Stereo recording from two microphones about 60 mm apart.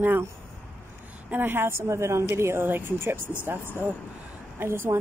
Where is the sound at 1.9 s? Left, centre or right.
Right.